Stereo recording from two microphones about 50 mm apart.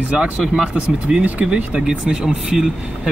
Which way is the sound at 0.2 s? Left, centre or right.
Centre.